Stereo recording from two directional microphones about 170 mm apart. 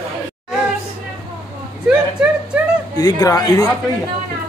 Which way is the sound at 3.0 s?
20° left (ahead or behind).